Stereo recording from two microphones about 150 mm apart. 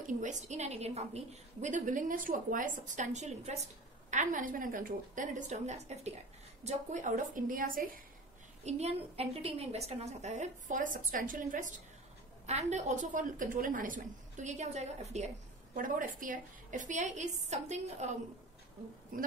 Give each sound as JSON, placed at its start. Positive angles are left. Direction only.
{"t": 0.0, "sound": "a woman's voice", "side_deg": -55}
{"t": 8.6, "sound": "a woman's voice", "side_deg": -45}
{"t": 12.4, "sound": "a woman's voice", "side_deg": -50}
{"t": 19.1, "sound": "speech", "side_deg": -70}